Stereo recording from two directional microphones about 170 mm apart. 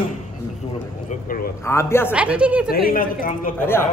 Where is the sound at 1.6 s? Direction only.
15° left (ahead or behind).